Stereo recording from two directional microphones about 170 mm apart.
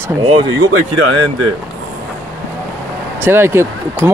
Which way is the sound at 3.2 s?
15° right (ahead or behind).